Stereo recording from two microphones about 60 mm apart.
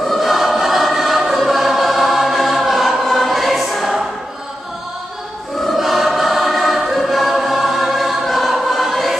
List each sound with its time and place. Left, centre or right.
0.0 s choir: centre
5.6 s choir: centre